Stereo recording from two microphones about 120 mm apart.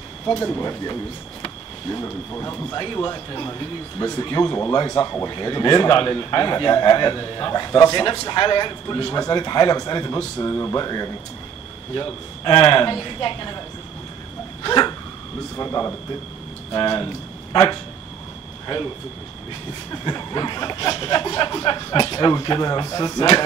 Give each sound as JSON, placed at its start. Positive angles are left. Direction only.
{"t": 0.5, "sound": "speech", "side_deg": 25}
{"t": 1.9, "sound": "speech", "side_deg": 25}
{"t": 2.8, "sound": "speech", "side_deg": 35}
{"t": 14.6, "sound": "dog", "side_deg": 35}
{"t": 15.5, "sound": "a man's voice", "side_deg": 25}
{"t": 19.9, "sound": "speech", "side_deg": 30}